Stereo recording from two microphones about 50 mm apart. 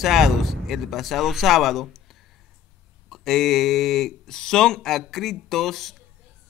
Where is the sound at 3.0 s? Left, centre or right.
Centre.